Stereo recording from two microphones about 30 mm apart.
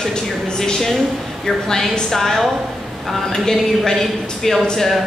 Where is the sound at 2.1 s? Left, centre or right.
Centre.